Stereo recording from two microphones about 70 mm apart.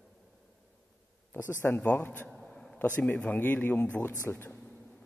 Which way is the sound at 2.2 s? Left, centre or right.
Centre.